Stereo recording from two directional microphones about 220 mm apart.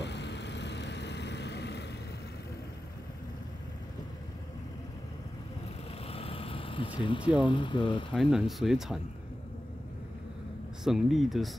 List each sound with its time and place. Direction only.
0.0 s vehicle: 50° left (ahead or behind)
6.0 s a sound: 25° left (ahead or behind)
8.1 s speech: centre (ahead or behind)
10.8 s speech: centre (ahead or behind)